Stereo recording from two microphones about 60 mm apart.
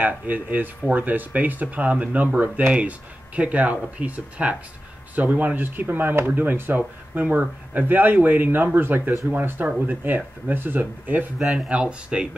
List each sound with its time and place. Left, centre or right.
0.0 s speech: right
11.3 s speech: centre